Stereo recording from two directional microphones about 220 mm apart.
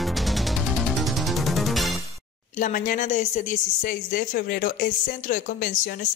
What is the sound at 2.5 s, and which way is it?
A woman's voice, 35° left (ahead or behind).